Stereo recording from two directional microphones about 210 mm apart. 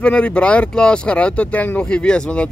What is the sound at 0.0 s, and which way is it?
Speech, 5° left (ahead or behind).